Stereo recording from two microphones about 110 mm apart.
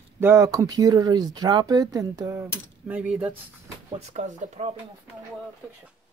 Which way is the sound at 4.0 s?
90° right.